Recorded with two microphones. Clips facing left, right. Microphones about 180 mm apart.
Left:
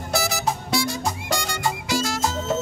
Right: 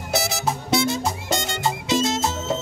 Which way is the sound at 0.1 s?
20° right (ahead or behind).